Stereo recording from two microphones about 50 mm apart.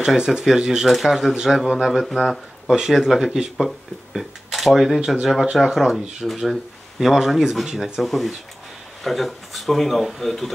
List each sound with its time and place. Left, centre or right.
0.0 s speech: centre
0.8 s speech: centre
2.9 s speech: centre